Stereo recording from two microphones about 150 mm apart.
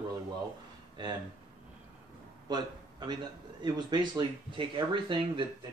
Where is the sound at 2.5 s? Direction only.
30° right (ahead or behind).